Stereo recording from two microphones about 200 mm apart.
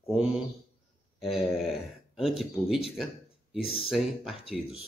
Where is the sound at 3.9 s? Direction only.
Centre (ahead or behind).